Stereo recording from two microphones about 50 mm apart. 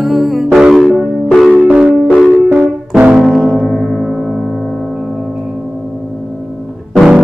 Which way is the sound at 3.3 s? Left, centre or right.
Centre.